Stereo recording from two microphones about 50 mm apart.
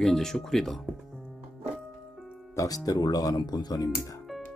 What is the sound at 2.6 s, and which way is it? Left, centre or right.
Music, left.